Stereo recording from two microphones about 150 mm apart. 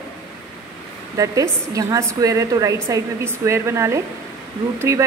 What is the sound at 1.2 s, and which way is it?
Speech, 20° right (ahead or behind).